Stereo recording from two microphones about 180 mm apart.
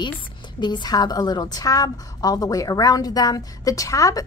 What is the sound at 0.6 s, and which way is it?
A woman's voice, 25° left (ahead or behind).